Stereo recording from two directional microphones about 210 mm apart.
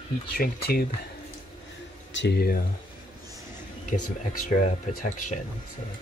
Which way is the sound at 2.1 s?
50° left (ahead or behind).